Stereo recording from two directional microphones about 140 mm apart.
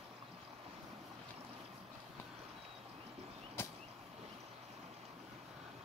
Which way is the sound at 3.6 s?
15° left (ahead or behind).